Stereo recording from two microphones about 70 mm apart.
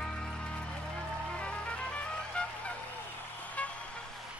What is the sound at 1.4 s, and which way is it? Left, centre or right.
Music, centre.